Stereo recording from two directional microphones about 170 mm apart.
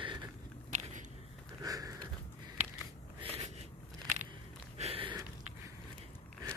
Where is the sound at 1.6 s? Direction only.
20° right (ahead or behind).